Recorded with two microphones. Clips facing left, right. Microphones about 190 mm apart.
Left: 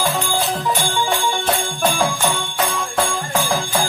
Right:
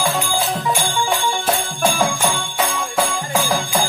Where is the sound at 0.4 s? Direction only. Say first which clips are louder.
Even; centre (ahead or behind).